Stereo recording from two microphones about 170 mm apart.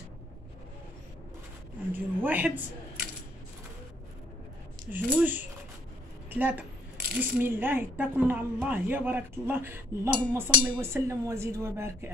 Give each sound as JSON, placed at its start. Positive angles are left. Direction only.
{"t": 2.0, "sound": "speech", "side_deg": -10}
{"t": 4.9, "sound": "speech", "side_deg": -10}